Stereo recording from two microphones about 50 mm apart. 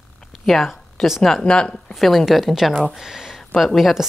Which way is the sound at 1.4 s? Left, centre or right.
Centre.